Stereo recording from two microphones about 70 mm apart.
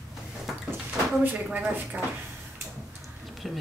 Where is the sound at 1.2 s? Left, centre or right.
Right.